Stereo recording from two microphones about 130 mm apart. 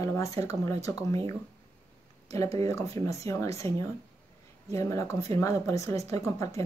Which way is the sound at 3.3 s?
25° left (ahead or behind).